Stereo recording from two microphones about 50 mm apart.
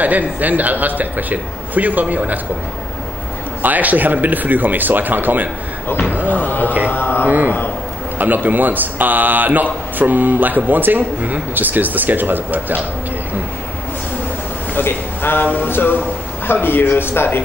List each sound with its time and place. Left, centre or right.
0.0 s a man's voice: right
3.6 s a man's voice: right
6.2 s music: left
6.9 s mantra: left
7.2 s a man's voice: right
14.8 s a man's voice: left